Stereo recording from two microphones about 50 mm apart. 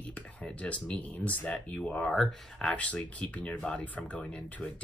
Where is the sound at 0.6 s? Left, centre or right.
Left.